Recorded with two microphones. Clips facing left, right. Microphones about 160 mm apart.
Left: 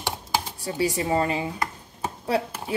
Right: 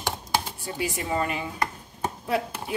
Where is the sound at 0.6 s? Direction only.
35° left (ahead or behind).